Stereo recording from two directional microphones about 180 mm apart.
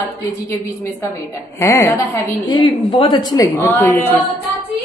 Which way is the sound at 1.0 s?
15° left (ahead or behind).